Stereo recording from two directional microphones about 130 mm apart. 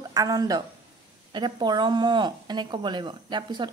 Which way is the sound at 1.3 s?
35° right (ahead or behind).